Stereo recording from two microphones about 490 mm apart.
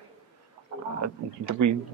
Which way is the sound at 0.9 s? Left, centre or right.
Right.